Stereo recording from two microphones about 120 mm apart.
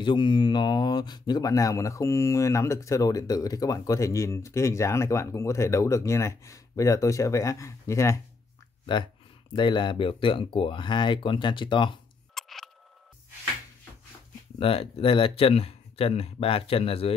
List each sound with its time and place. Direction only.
0.0 s speech: 40° left (ahead or behind); by 8.2 s 25° left (ahead or behind)
9.5 s speech: 40° left (ahead or behind)
12.4 s a sound: centre (ahead or behind)
14.6 s speech: 50° left (ahead or behind)